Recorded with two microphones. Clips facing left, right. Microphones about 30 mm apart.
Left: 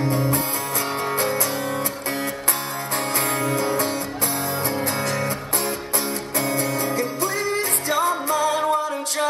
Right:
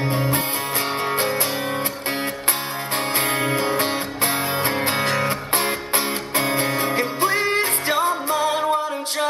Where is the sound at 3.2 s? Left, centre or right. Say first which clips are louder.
Right 2 dB; right.